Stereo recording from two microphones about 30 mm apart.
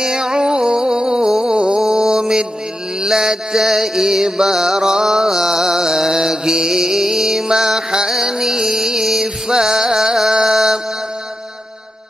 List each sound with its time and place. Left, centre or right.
0.0 s music: right
1.9 s mantra: centre
3.0 s music: right
10.4 s mantra: centre